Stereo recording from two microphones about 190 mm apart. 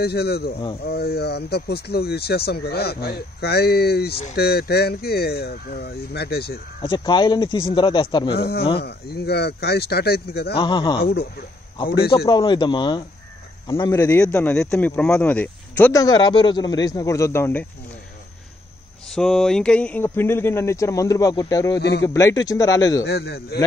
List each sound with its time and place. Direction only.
0.0 s speech: 55° left (ahead or behind)
6.8 s speech: 25° left (ahead or behind)
8.4 s speech: 55° left (ahead or behind)
10.5 s speech: 25° left (ahead or behind)
11.0 s speech: 55° left (ahead or behind)
12.3 s a man's voice: 20° left (ahead or behind)
19.1 s a man's voice: centre (ahead or behind); by 21.7 s 20° left (ahead or behind)
21.7 s speech: 65° left (ahead or behind)
22.0 s a man's voice: 15° left (ahead or behind)
23.0 s speech: 60° left (ahead or behind)